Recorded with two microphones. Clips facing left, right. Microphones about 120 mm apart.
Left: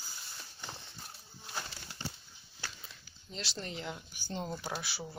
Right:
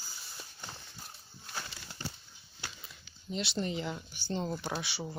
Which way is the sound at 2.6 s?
15° right (ahead or behind).